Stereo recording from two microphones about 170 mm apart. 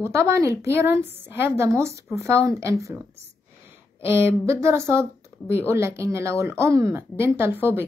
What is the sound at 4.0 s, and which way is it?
A woman's voice, 15° right (ahead or behind).